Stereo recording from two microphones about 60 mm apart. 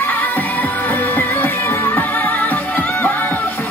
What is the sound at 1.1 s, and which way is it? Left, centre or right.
Music, left.